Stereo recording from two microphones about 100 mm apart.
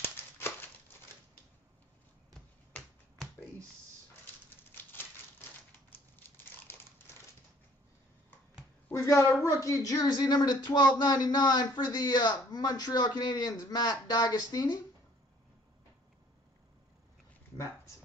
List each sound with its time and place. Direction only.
0.0 s a sound: 20° left (ahead or behind)
5.9 s crumpling: 20° left (ahead or behind)
8.9 s a woman's voice: 30° left (ahead or behind)